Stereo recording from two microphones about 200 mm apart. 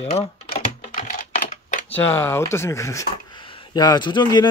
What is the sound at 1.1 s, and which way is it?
Typing, 40° left (ahead or behind).